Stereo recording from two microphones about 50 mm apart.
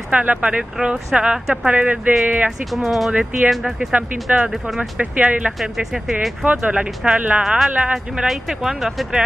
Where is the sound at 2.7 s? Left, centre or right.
Centre.